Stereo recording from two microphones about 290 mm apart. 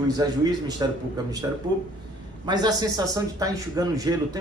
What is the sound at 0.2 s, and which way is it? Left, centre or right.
A man's voice, centre.